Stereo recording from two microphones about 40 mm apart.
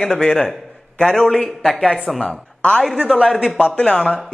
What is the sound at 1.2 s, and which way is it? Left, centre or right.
A man's voice, centre.